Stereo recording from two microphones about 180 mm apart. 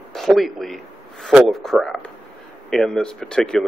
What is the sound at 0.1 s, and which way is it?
A man's voice, centre (ahead or behind).